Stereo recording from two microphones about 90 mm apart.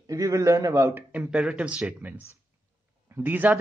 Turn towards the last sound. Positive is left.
turn(degrees=-20)  # may be behind; listen again after turning